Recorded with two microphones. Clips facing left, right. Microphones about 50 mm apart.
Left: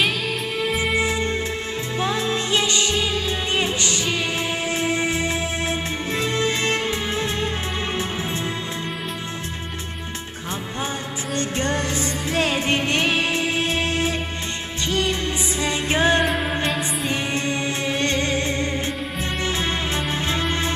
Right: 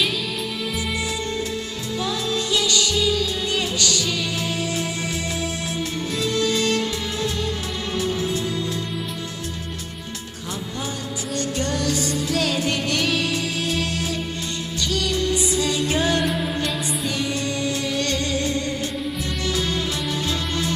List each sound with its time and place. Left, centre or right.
2.0 s music: left
6.1 s music: left
11.3 s music: left